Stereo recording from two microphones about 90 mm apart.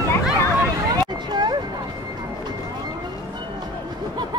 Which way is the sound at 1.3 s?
55° right (ahead or behind).